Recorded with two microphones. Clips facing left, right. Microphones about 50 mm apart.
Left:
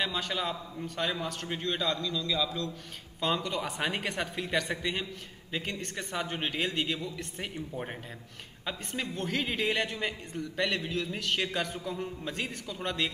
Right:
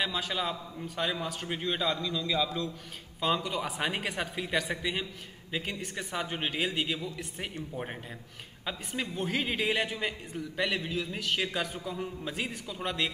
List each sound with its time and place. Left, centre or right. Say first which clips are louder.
0.0 s a man's voice: even; centre
3.2 s a man's voice: right 1 dB; centre